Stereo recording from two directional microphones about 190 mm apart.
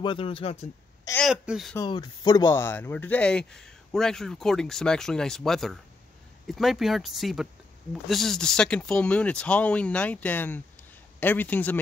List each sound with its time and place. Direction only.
0.0 s speech: 25° left (ahead or behind)
1.2 s speech: 5° right (ahead or behind)
1.8 s a man's voice: 20° left (ahead or behind)